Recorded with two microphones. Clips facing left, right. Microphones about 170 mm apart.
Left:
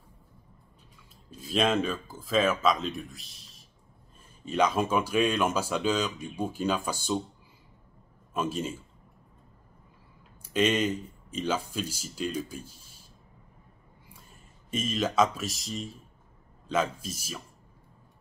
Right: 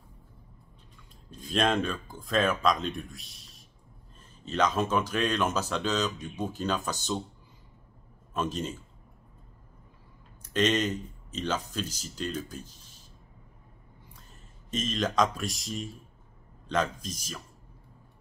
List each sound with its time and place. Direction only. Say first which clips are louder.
1.3 s speech: left 1 dB; 5° left (ahead or behind)
4.5 s speech: left 1 dB; 10° left (ahead or behind)
8.3 s a man's voice: left 1 dB; 10° left (ahead or behind)
10.4 s speech: left 1 dB; 10° left (ahead or behind)
14.7 s speech: left 1 dB; 10° left (ahead or behind)